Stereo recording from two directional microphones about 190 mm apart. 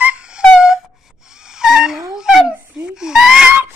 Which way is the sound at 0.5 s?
5° right (ahead or behind).